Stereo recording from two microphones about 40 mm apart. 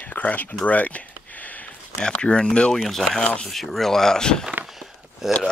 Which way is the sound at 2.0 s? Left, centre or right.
Left.